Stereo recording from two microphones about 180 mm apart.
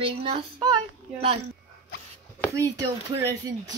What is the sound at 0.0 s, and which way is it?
Speech, 30° right (ahead or behind).